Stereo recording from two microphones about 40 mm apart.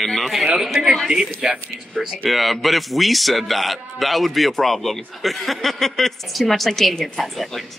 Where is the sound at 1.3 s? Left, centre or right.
Right.